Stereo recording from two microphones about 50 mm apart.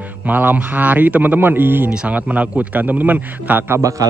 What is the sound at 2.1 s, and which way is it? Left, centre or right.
A man's voice, right.